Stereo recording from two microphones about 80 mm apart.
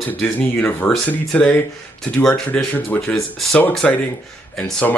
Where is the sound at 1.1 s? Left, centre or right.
Centre.